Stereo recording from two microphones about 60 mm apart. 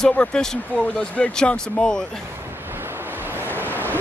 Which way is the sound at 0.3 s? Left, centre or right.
Centre.